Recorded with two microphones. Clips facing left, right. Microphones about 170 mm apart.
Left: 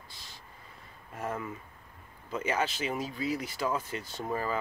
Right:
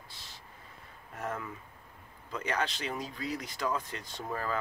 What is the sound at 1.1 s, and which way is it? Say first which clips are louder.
Speech: left 2 dB; 5° left (ahead or behind).